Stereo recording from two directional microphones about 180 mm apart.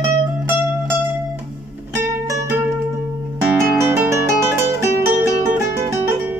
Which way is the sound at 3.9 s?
15° right (ahead or behind).